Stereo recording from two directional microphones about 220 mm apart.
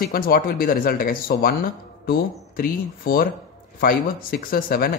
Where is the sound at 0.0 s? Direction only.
40° left (ahead or behind).